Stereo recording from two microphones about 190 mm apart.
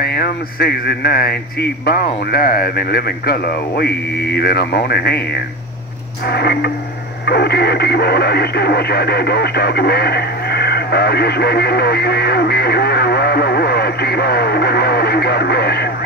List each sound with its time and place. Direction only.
0.0 s speech: 55° left (ahead or behind)